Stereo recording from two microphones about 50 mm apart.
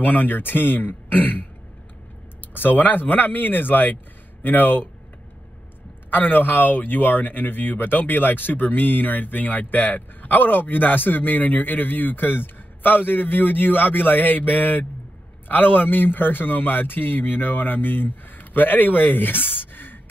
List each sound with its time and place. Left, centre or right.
0.0 s speech: left
2.5 s speech: left
6.0 s speech: left